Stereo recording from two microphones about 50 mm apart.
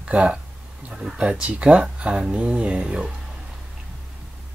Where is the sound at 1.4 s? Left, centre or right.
Right.